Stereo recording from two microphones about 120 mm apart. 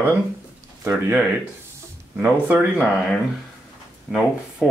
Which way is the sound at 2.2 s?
20° right (ahead or behind).